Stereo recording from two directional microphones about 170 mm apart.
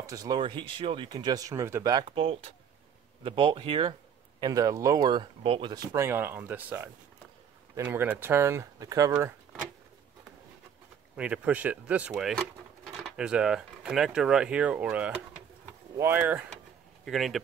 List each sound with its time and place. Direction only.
0.0 s speech: 20° right (ahead or behind)
11.1 s speech: 5° right (ahead or behind)